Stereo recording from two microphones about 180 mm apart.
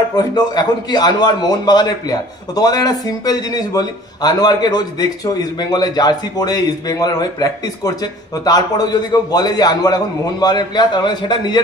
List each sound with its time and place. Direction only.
0.1 s a man's voice: 25° left (ahead or behind)